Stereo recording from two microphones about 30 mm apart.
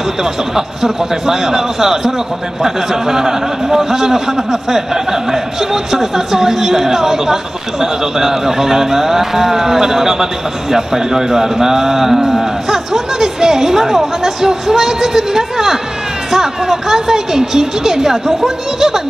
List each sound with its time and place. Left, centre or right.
0.2 s a man's voice: centre